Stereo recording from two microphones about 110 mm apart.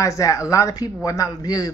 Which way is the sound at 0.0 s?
30° left (ahead or behind).